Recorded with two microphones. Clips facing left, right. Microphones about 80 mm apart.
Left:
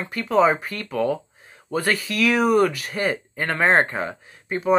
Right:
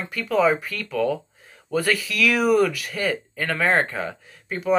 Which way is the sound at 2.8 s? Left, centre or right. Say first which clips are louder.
Left 1 dB; left.